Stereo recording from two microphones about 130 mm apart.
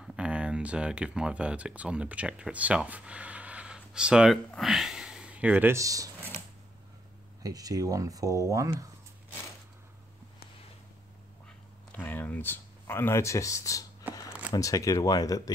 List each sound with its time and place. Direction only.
0.0 s speech: 5° right (ahead or behind); by 6.1 s 25° right (ahead or behind)
7.4 s speech: 30° right (ahead or behind)
11.4 s a sound: 10° left (ahead or behind)
14.5 s speech: 25° left (ahead or behind)